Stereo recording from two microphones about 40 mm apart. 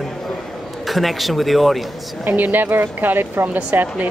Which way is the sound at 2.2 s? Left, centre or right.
Right.